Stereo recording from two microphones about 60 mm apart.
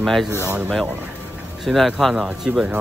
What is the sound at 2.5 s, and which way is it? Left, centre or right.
Speech, centre.